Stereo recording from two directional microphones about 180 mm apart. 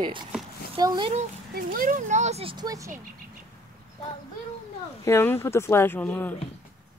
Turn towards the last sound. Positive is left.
turn(degrees=10)  # may be behind; listen again after turning